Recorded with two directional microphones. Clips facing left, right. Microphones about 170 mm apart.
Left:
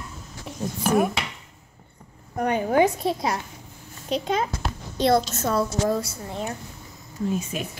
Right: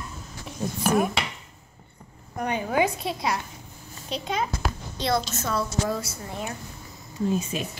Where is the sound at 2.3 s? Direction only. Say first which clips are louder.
Left 4 dB; 50° left (ahead or behind).